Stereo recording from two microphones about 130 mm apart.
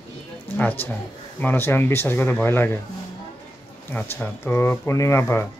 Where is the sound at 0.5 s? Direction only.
15° left (ahead or behind).